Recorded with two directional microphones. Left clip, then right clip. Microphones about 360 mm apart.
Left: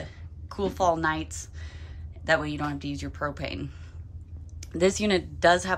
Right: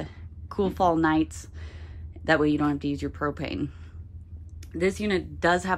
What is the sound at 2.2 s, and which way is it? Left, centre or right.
Speech, centre.